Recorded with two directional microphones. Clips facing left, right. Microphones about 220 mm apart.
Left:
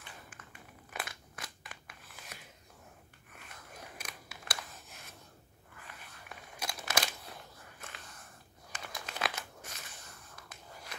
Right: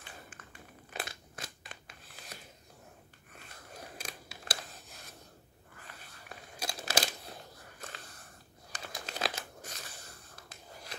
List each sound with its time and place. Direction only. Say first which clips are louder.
0.0 s crumpling: right 1 dB; 30° right (ahead or behind)
3.3 s a sound: right 2 dB; 30° right (ahead or behind)
8.7 s crumpling: right 1 dB; 35° right (ahead or behind)